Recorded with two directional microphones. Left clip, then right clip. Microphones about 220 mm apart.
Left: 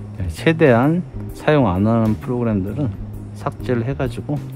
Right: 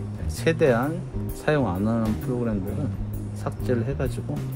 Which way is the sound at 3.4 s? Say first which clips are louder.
Left 5 dB; 25° left (ahead or behind).